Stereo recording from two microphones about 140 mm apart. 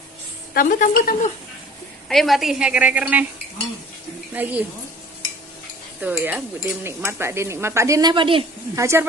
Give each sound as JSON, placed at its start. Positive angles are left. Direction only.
{"t": 0.6, "sound": "a woman's voice", "side_deg": 80}
{"t": 2.0, "sound": "a woman's voice", "side_deg": 0}
{"t": 4.3, "sound": "a woman's voice", "side_deg": -15}
{"t": 5.9, "sound": "speech", "side_deg": -10}
{"t": 8.1, "sound": "a woman's voice", "side_deg": -35}
{"t": 8.7, "sound": "speech", "side_deg": -20}